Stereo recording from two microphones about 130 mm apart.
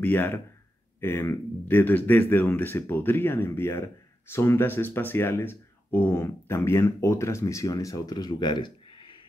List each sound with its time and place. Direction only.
0.0 s speech: 15° left (ahead or behind); by 9.2 s 40° left (ahead or behind)